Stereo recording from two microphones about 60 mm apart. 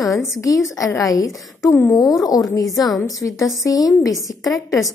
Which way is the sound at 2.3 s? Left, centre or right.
Left.